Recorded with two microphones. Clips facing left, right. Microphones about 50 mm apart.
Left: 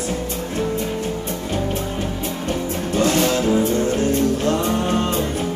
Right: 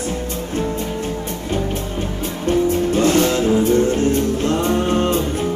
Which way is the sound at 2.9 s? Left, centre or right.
Right.